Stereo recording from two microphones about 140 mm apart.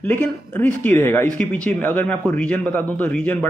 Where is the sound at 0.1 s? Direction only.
15° left (ahead or behind).